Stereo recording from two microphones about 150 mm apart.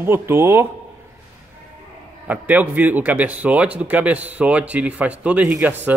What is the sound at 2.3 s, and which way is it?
Speech, 10° right (ahead or behind).